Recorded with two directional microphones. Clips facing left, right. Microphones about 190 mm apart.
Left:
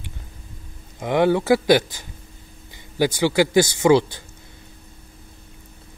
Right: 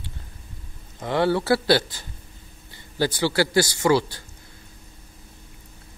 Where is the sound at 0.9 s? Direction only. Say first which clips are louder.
Left 3 dB; 15° left (ahead or behind).